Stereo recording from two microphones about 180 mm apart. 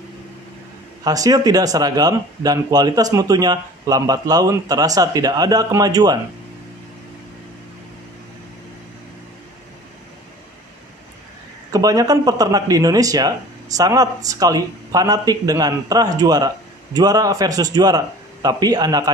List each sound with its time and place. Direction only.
1.0 s speech: 20° right (ahead or behind)
11.7 s speech: 20° right (ahead or behind)